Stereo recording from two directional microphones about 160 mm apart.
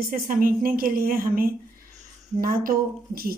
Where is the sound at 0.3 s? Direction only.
60° right (ahead or behind).